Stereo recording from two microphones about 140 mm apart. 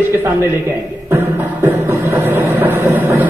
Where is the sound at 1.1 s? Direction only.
20° right (ahead or behind).